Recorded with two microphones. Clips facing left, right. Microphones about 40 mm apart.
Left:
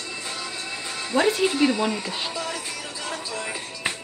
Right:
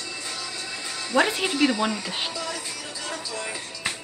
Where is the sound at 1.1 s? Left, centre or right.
Centre.